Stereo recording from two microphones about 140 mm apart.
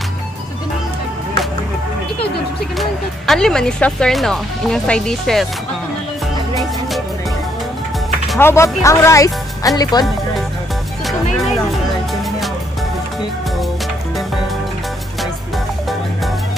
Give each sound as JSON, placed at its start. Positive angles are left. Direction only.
{"t": 2.8, "sound": "speech", "side_deg": 5}
{"t": 8.4, "sound": "speech", "side_deg": 20}